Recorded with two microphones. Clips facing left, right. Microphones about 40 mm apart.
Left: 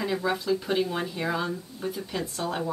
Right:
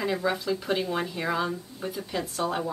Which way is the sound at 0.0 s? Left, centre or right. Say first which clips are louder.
Even; centre.